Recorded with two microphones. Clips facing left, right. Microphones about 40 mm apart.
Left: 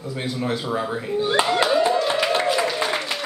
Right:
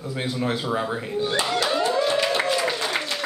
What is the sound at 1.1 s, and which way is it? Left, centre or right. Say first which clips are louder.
Speech: left 5 dB; centre.